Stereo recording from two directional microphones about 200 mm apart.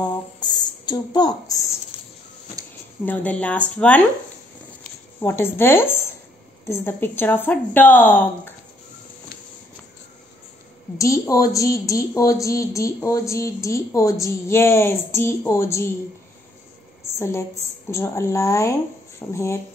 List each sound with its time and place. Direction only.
0.0 s a sound: 20° left (ahead or behind)
3.1 s speech: 5° left (ahead or behind)
5.2 s speech: 10° left (ahead or behind)
11.0 s speech: 15° left (ahead or behind)
17.2 s speech: 15° left (ahead or behind)